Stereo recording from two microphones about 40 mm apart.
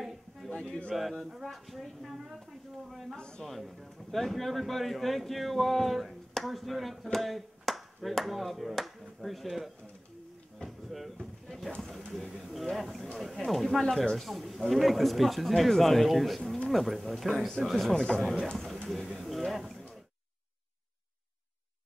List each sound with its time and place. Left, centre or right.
0.0 s a sound: centre
0.9 s speech: centre
3.2 s speech: left
3.4 s speech: centre
10.6 s a sound: centre
12.1 s speech: centre
17.9 s speech: centre
18.9 s speech: centre